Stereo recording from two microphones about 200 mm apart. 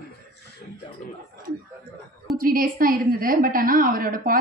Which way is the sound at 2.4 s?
45° right (ahead or behind).